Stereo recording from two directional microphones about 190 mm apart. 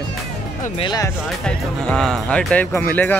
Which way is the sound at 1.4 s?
5° left (ahead or behind).